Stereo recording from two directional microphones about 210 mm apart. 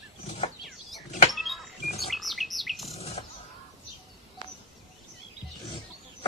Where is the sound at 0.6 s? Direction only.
Centre (ahead or behind).